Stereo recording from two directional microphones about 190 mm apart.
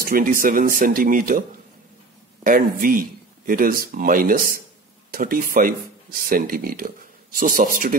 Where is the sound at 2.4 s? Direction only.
45° right (ahead or behind).